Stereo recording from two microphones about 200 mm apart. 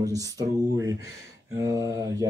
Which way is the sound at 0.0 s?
15° right (ahead or behind).